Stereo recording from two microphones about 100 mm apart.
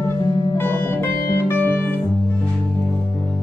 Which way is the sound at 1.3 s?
15° left (ahead or behind).